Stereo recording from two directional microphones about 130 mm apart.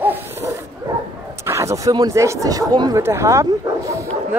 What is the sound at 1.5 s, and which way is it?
Speech, 20° right (ahead or behind).